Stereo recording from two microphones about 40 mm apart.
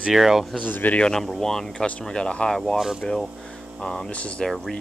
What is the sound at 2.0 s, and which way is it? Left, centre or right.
Speech, left.